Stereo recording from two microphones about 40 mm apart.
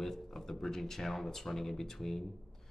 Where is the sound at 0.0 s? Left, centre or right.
Centre.